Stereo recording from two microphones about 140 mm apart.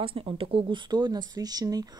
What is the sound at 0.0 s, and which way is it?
Speech, 40° right (ahead or behind).